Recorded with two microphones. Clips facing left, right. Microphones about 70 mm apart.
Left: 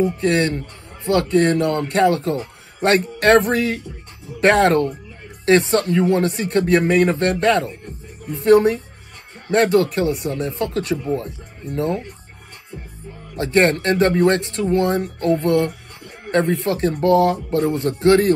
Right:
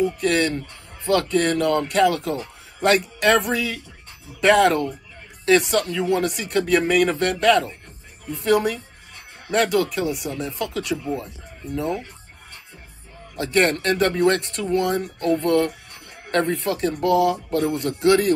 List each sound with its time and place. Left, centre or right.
0.0 s speech: left
9.8 s speech: left
13.4 s speech: left